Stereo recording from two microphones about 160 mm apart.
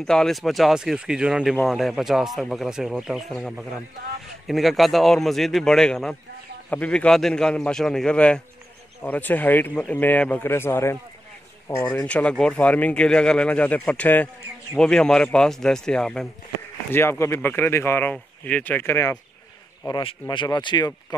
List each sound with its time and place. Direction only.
0.0 s speech: 5° left (ahead or behind)
16.9 s speech: 15° left (ahead or behind)
19.9 s speech: 30° left (ahead or behind)